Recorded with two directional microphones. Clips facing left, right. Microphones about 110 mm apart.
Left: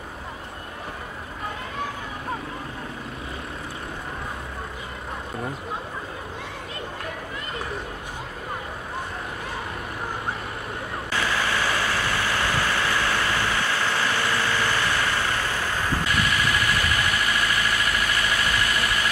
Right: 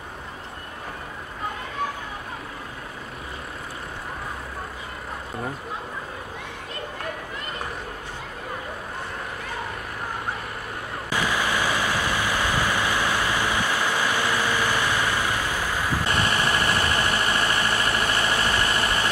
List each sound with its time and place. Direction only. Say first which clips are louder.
11.1 s vehicle: right 1 dB; 15° right (ahead or behind)
16.1 s vehicle: right 3 dB; 30° right (ahead or behind)